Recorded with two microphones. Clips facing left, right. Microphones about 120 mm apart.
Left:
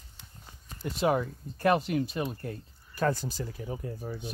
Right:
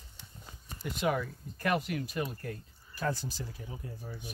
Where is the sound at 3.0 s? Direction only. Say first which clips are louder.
Left 6 dB; 55° left (ahead or behind).